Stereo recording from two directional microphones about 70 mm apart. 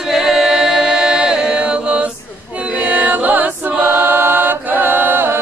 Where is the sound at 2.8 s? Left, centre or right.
Right.